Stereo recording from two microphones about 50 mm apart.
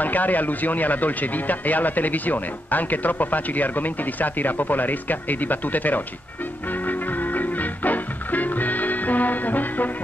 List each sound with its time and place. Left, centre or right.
0.0 s speech: left
6.9 s music: left